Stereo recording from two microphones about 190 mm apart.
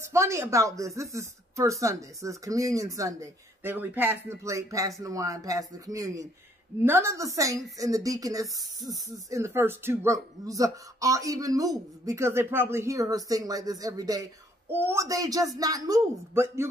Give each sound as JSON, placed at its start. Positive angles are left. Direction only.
{"t": 0.0, "sound": "speech", "side_deg": -15}